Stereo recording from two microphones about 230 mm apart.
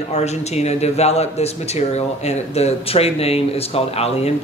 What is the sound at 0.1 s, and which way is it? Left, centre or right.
Speech, left.